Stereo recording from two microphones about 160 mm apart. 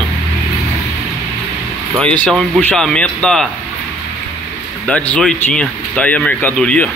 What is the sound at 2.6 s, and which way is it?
Speech, 5° left (ahead or behind).